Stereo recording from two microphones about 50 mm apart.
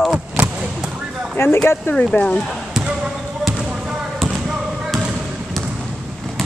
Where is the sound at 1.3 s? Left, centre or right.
Left.